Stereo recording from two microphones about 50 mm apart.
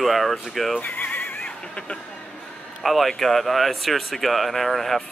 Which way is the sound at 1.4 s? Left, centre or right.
Left.